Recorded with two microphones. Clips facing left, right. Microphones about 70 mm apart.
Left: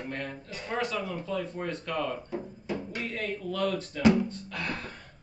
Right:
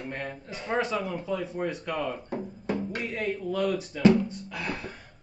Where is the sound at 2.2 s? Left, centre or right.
Right.